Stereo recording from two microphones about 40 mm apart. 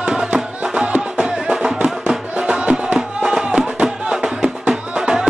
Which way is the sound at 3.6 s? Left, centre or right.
Right.